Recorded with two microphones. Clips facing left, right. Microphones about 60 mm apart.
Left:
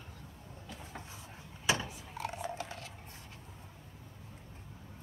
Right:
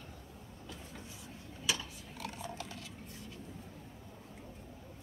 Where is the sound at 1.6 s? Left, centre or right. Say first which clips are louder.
Left 5 dB; left.